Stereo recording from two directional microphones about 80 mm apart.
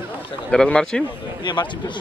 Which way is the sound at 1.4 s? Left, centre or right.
Left.